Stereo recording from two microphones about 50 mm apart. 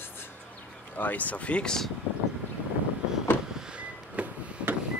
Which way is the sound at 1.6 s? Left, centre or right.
Centre.